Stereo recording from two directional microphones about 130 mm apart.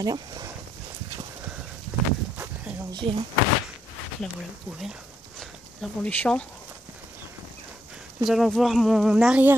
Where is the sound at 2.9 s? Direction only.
40° right (ahead or behind).